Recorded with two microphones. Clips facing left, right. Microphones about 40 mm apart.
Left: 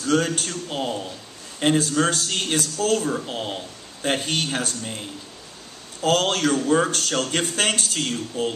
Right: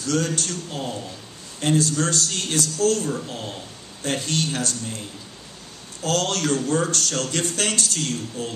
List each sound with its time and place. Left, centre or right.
0.0 s a man's voice: left
6.0 s a man's voice: left